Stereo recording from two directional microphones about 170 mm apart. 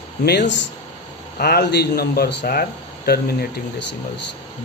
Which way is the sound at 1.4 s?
75° left (ahead or behind).